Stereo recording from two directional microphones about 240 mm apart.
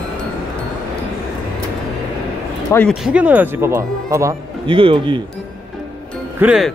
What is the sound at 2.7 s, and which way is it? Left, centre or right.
Speech, centre.